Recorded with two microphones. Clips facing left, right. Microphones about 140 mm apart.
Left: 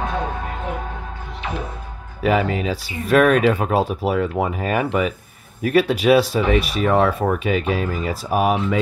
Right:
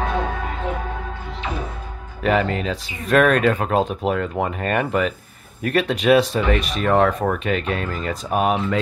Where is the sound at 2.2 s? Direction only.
5° left (ahead or behind).